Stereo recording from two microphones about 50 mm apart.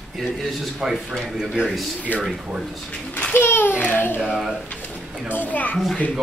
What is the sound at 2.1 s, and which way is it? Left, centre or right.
Speech, left.